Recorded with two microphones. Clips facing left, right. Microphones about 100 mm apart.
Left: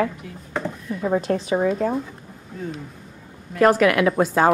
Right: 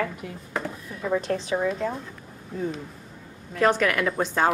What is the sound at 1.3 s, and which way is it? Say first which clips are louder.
Speech: left 4 dB; 25° left (ahead or behind).